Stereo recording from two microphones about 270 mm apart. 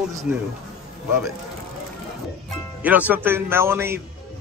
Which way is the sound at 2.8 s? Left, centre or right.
Centre.